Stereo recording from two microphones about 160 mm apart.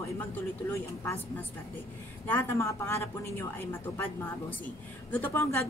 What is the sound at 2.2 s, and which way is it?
A woman's voice, 10° left (ahead or behind).